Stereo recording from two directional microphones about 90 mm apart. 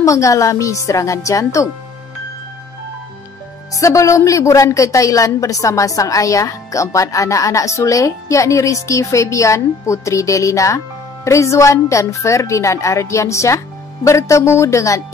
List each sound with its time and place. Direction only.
0.0 s a woman's voice: 35° left (ahead or behind)
3.7 s a woman's voice: 35° left (ahead or behind)